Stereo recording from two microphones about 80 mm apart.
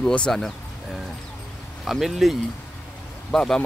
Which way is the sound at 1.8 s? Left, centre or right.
Centre.